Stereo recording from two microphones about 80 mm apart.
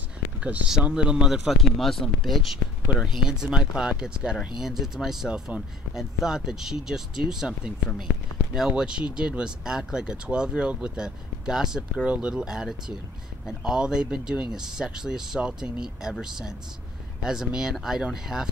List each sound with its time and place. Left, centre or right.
0.4 s speech: centre